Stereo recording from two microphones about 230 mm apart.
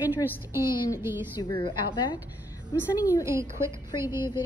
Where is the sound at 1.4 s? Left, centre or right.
Left.